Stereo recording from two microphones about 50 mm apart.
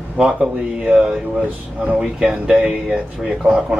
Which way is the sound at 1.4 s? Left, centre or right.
Right.